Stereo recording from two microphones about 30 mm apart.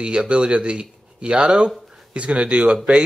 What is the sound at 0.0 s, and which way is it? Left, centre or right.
Speech, right.